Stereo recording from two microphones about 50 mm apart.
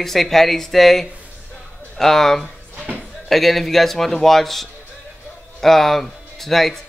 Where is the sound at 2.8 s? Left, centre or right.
Right.